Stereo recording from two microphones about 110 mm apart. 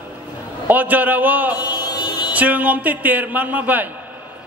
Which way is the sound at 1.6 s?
40° left (ahead or behind).